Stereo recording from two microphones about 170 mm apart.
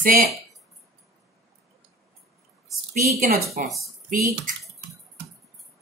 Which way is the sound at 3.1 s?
60° right (ahead or behind).